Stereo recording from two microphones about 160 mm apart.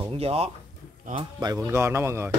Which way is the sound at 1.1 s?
25° right (ahead or behind).